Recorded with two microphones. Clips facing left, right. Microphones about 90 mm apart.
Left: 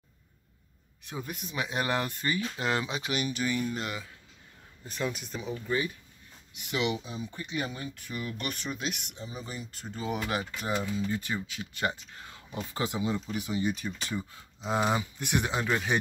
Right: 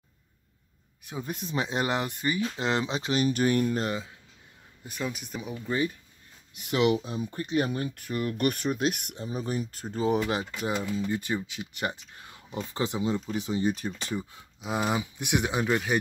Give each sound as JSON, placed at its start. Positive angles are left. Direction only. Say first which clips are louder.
{"t": 1.0, "sound": "speech", "louder": "right 2 dB", "side_deg": -20}
{"t": 1.3, "sound": "speech", "louder": "right 4 dB", "side_deg": -30}
{"t": 3.3, "sound": "speech", "louder": "right 6 dB", "side_deg": -50}
{"t": 3.8, "sound": "speech", "louder": "right 6 dB", "side_deg": -30}
{"t": 4.8, "sound": "speech", "louder": "even", "side_deg": -5}
{"t": 6.5, "sound": "speech", "louder": "right 6 dB", "side_deg": -40}
{"t": 10.3, "sound": "speech", "louder": "right 2 dB", "side_deg": -15}
{"t": 14.1, "sound": "speech", "louder": "right 2 dB", "side_deg": -10}
{"t": 15.1, "sound": "speech", "louder": "right 2 dB", "side_deg": -15}
{"t": 15.7, "sound": "speech", "louder": "right 2 dB", "side_deg": -5}